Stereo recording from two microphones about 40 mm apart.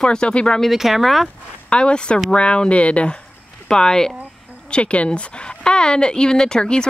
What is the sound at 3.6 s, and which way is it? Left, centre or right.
Speech, centre.